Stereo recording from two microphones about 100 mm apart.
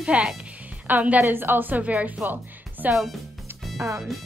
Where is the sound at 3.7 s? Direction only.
30° right (ahead or behind).